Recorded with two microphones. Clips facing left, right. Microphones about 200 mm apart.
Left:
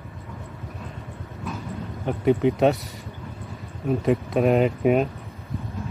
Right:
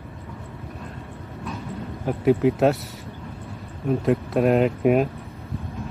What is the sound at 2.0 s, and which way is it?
Speech, centre (ahead or behind).